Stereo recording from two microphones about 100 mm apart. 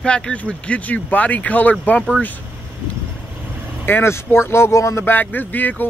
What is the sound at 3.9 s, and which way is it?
Speech, 25° left (ahead or behind).